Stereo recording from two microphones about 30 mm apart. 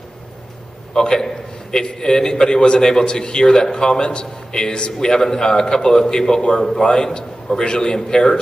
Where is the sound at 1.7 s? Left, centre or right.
Left.